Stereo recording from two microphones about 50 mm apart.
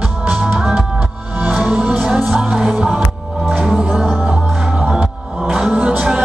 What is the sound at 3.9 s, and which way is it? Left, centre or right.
Music, centre.